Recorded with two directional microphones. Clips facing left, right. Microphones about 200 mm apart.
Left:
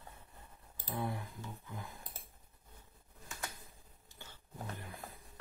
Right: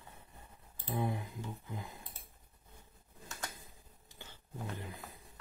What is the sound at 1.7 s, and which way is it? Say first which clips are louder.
Speech: right 2 dB; 15° right (ahead or behind).